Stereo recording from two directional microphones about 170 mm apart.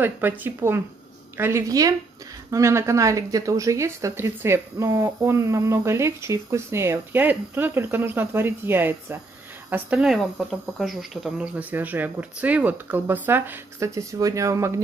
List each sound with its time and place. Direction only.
0.0 s speech: 10° right (ahead or behind)